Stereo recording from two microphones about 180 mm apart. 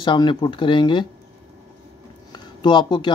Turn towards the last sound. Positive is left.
turn(degrees=25)  # may be behind; listen again after turning